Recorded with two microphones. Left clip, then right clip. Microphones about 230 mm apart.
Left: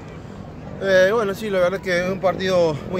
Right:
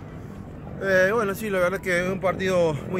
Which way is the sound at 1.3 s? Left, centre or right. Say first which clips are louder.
Left 4 dB; centre.